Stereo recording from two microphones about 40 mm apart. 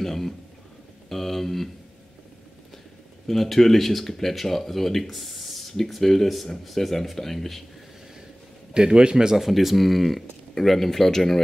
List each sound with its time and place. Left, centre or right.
0.0 s a man's voice: centre
3.3 s speech: centre
8.7 s a man's voice: right
9.5 s speech: centre